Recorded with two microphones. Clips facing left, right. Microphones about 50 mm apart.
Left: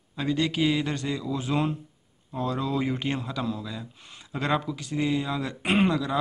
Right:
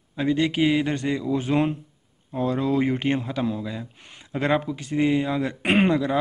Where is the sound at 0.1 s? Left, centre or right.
Right.